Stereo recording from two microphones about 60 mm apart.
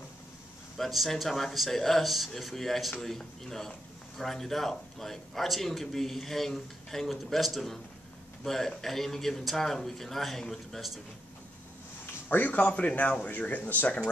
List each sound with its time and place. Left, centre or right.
0.7 s a man's voice: centre
12.3 s speech: left